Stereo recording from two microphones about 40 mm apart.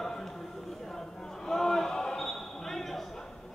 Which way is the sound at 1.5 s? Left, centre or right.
Centre.